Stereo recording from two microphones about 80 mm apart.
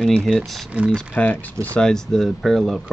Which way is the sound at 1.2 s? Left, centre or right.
Left.